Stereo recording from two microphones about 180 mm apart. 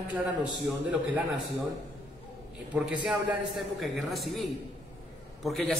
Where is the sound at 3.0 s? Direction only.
Centre (ahead or behind).